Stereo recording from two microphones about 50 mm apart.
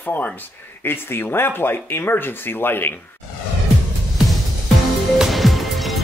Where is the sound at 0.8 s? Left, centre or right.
Left.